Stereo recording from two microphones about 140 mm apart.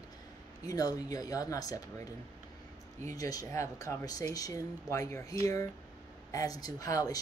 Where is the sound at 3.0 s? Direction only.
25° left (ahead or behind).